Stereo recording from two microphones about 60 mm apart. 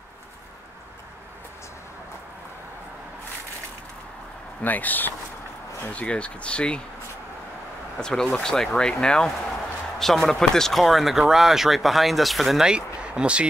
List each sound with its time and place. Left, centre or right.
4.6 s speech: left
8.0 s speech: centre
12.6 s speech: centre